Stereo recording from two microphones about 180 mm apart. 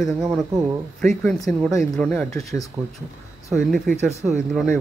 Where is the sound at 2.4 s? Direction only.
20° left (ahead or behind).